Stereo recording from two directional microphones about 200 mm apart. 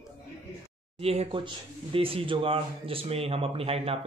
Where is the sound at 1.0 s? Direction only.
30° right (ahead or behind).